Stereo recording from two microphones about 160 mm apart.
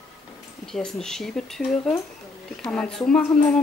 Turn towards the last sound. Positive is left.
turn(degrees=5)  # may be behind; listen again after turning